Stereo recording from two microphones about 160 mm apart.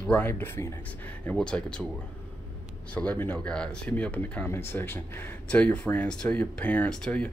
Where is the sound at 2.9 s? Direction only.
10° left (ahead or behind).